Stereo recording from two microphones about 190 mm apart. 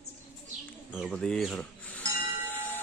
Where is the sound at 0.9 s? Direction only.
Centre (ahead or behind).